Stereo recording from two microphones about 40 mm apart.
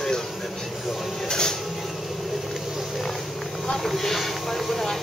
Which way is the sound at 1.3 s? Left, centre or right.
Centre.